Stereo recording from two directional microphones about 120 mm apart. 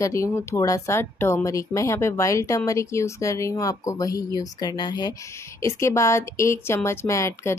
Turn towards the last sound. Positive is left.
turn(degrees=25)  # may be behind; listen again after turning